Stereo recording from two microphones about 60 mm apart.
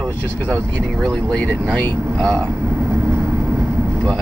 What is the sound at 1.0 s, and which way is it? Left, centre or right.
Speech, centre.